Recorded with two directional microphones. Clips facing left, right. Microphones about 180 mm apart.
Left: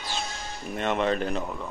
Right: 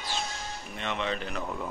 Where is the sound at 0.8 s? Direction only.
50° left (ahead or behind).